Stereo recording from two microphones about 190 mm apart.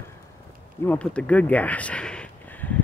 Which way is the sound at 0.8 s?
5° left (ahead or behind).